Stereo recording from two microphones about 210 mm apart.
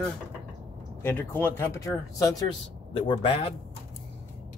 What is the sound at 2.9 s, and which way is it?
Speech, 25° left (ahead or behind).